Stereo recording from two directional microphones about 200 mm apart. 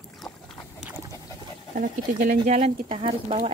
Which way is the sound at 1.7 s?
40° right (ahead or behind).